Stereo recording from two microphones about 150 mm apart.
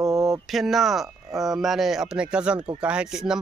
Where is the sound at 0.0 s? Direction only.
20° right (ahead or behind).